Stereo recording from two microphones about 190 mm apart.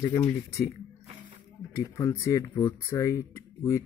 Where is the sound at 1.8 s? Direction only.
15° left (ahead or behind).